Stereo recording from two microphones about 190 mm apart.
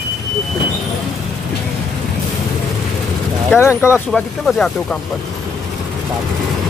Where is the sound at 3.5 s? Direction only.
10° left (ahead or behind).